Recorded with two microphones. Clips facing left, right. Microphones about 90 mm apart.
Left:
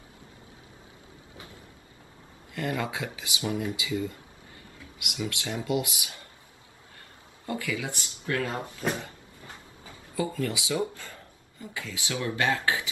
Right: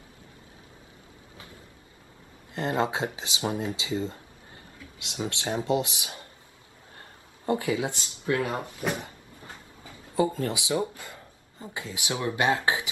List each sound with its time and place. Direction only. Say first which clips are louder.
2.5 s speech: right 4 dB; 25° right (ahead or behind)
10.1 s speech: right 4 dB; 25° right (ahead or behind)